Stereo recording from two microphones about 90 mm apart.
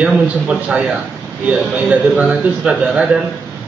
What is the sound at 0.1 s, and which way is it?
A man's voice, 10° right (ahead or behind).